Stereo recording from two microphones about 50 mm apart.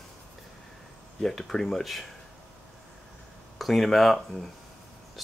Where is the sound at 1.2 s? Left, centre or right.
Centre.